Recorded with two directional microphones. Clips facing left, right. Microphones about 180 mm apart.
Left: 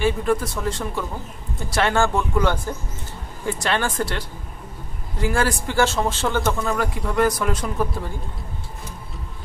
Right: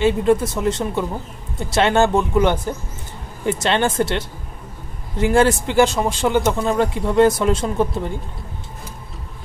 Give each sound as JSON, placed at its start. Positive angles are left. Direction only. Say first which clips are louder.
{"t": 0.0, "sound": "speech", "louder": "right 5 dB", "side_deg": -20}
{"t": 5.2, "sound": "speech", "louder": "right 7 dB", "side_deg": -25}